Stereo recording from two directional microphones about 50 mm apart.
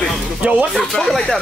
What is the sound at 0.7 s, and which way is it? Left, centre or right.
Speech, centre.